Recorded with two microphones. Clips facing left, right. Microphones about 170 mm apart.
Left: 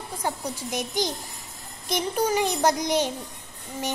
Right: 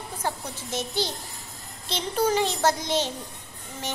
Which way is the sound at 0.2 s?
15° left (ahead or behind).